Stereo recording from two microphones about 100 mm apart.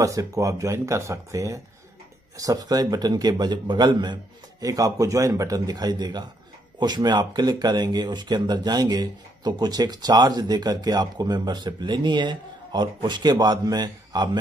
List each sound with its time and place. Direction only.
0.0 s a man's voice: 35° right (ahead or behind)